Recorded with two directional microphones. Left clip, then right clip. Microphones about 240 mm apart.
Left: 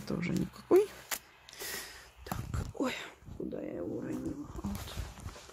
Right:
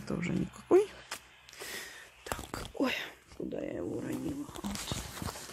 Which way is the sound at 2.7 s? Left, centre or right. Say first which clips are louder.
Right 3 dB; right.